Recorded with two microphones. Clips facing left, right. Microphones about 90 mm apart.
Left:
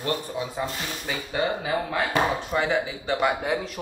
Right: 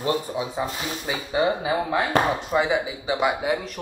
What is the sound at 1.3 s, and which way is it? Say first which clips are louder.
Speech: right 4 dB; 15° right (ahead or behind).